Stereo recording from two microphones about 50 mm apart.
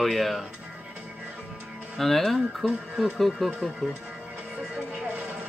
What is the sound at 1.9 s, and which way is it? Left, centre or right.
Speech, centre.